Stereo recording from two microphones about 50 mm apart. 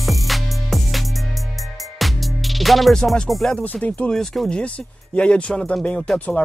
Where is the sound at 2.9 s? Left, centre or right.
Centre.